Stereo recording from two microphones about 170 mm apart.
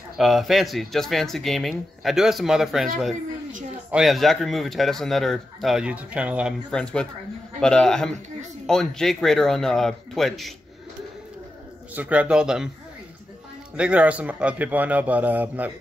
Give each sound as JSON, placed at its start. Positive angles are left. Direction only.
{"t": 0.2, "sound": "speech", "side_deg": 0}
{"t": 6.7, "sound": "speech", "side_deg": 5}
{"t": 11.9, "sound": "a man's voice", "side_deg": -10}
{"t": 13.7, "sound": "a man's voice", "side_deg": -5}